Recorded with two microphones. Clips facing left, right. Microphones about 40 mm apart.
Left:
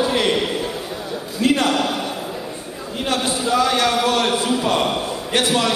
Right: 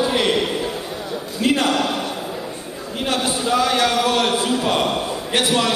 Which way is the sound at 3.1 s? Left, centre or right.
Centre.